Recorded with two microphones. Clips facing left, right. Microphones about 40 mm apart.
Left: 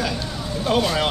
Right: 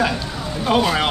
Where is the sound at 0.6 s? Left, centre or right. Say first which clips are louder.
Right 3 dB; centre.